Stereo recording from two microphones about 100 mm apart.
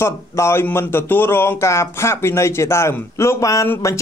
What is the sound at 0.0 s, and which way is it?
Speech, 25° left (ahead or behind).